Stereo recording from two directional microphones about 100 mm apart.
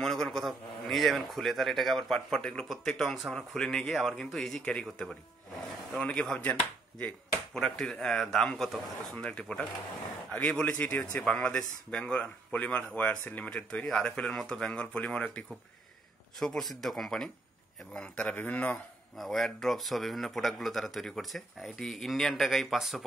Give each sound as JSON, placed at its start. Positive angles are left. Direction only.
{"t": 0.0, "sound": "a man's voice", "side_deg": 5}
{"t": 7.5, "sound": "a man's voice", "side_deg": 10}
{"t": 19.1, "sound": "a man's voice", "side_deg": 0}